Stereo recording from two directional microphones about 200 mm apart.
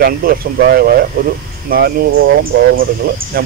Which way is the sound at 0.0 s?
50° right (ahead or behind).